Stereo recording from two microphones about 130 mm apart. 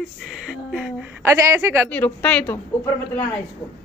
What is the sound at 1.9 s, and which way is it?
A man's voice, 10° left (ahead or behind).